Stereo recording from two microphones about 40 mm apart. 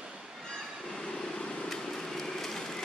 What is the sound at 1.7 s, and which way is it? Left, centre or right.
Vehicle, centre.